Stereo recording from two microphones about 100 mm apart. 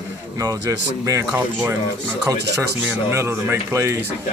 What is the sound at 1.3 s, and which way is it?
Speech, 20° right (ahead or behind).